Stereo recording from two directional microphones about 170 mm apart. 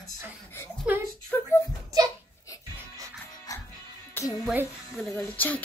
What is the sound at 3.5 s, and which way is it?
Music, 20° left (ahead or behind).